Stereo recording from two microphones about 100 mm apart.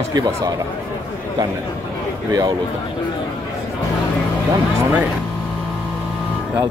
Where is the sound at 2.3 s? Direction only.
35° right (ahead or behind).